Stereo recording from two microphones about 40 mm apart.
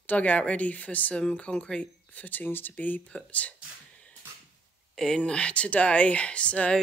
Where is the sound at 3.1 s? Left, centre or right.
Left.